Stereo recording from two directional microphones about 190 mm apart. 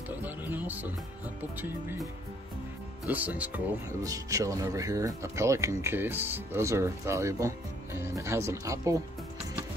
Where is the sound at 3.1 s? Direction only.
10° right (ahead or behind).